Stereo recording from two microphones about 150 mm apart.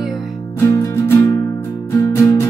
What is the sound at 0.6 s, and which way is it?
Music, 15° left (ahead or behind).